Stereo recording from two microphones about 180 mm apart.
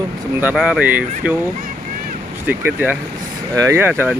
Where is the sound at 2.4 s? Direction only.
10° right (ahead or behind).